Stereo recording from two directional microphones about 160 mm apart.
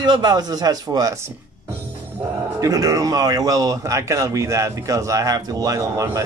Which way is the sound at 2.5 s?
20° right (ahead or behind).